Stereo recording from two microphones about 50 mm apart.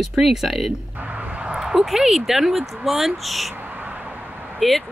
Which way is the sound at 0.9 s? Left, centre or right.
Right.